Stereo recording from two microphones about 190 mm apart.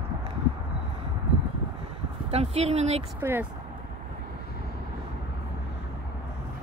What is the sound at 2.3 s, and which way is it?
Speech, 35° right (ahead or behind).